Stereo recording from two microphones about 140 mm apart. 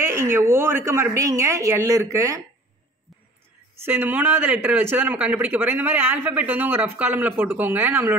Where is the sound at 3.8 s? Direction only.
15° right (ahead or behind).